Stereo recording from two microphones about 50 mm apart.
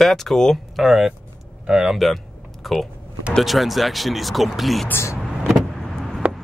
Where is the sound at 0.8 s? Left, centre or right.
Centre.